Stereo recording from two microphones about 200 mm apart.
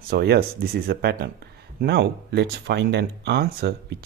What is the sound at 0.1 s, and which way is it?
Speech, 50° right (ahead or behind).